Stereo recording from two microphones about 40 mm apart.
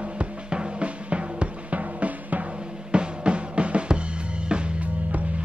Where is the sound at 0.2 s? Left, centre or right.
Right.